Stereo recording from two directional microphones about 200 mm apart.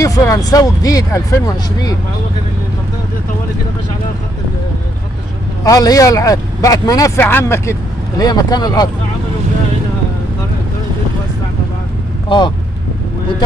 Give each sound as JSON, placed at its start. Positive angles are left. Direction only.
{"t": 0.0, "sound": "speech", "side_deg": 15}
{"t": 5.6, "sound": "speech", "side_deg": 20}
{"t": 12.3, "sound": "speech", "side_deg": 25}